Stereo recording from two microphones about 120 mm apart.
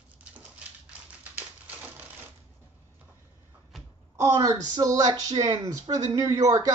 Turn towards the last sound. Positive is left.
turn(degrees=-30)  # may be behind; listen again after turning